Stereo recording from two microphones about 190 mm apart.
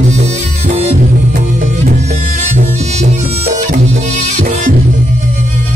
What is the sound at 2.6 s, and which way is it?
Music, 35° right (ahead or behind).